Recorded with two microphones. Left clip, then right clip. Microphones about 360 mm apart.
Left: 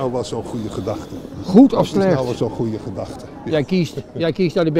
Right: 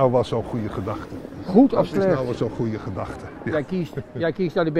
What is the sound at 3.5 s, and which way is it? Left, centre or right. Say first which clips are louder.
Speech: left 6 dB; left.